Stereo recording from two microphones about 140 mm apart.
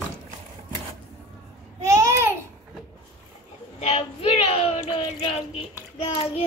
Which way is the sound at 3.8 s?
45° left (ahead or behind).